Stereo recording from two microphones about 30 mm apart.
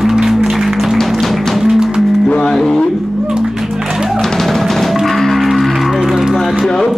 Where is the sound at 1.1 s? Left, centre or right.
Centre.